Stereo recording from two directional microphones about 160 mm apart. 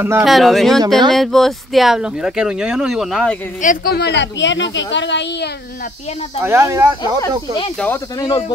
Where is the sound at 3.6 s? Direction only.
60° left (ahead or behind); by 6.4 s 45° left (ahead or behind).